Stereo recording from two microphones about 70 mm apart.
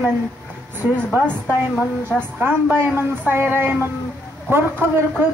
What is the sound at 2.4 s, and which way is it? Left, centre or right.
Speech, right.